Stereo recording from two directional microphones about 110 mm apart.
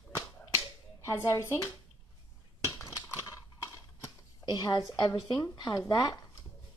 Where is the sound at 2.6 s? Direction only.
30° left (ahead or behind).